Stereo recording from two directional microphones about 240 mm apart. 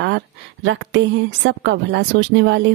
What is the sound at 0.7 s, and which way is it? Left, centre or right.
Speech, right.